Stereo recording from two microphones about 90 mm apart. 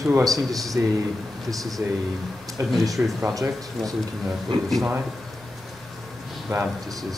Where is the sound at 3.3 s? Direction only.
40° right (ahead or behind).